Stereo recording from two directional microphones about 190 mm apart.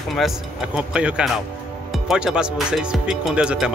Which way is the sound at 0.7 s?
5° right (ahead or behind).